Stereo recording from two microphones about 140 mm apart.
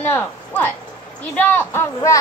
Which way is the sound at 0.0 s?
10° left (ahead or behind).